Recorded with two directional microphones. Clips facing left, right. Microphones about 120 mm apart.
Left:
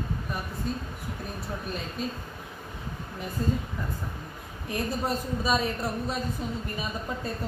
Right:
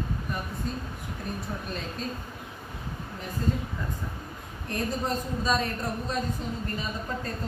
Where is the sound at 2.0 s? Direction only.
5° left (ahead or behind).